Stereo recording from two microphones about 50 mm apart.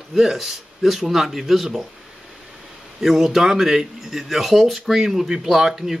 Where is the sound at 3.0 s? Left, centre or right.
Centre.